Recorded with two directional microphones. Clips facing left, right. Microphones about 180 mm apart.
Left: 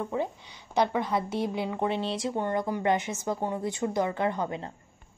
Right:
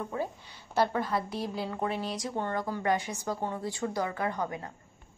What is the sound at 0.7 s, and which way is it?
A woman's voice, 20° left (ahead or behind).